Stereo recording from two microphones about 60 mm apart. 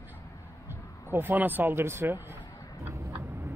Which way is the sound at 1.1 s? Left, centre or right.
Right.